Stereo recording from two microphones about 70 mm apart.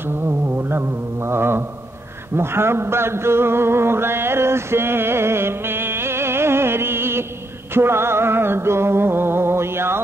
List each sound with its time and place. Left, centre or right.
0.6 s mantra: right
2.3 s a sound: right
7.7 s music: right